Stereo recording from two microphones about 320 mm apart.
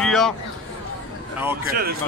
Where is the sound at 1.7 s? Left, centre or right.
Right.